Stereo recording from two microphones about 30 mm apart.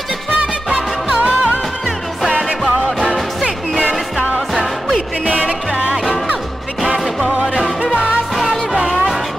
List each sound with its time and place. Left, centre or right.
1.2 s music: right
5.2 s music: right
7.8 s music: right
8.4 s music: centre
8.8 s music: centre